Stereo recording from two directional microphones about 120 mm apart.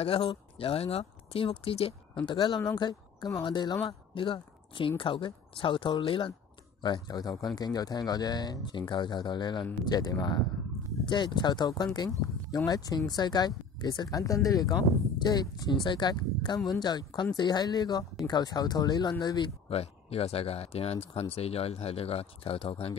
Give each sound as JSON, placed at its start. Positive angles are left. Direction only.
{"t": 0.0, "sound": "speech", "side_deg": 50}
{"t": 2.2, "sound": "a woman's voice", "side_deg": 40}
{"t": 19.7, "sound": "speech", "side_deg": 55}